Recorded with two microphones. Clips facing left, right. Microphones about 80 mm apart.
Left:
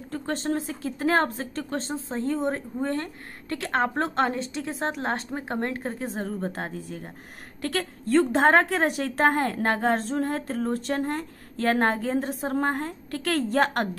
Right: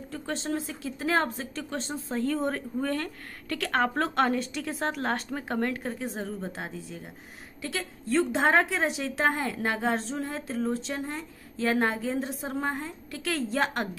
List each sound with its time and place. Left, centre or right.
0.1 s a woman's voice: left